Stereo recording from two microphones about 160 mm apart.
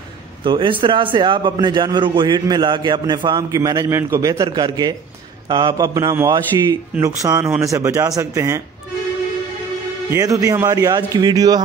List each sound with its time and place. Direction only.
0.4 s a man's voice: 30° right (ahead or behind)
10.0 s a man's voice: 20° right (ahead or behind)